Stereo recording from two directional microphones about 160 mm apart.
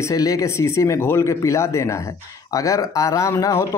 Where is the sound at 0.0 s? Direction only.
20° left (ahead or behind).